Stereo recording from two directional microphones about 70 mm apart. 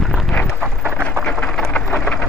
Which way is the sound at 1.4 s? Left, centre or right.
Centre.